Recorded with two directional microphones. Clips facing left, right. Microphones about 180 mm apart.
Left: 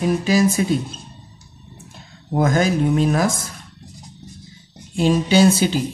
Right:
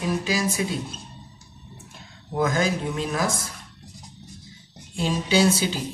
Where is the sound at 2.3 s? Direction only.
45° left (ahead or behind).